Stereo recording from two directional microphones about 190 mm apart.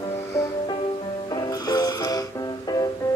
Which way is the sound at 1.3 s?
20° left (ahead or behind).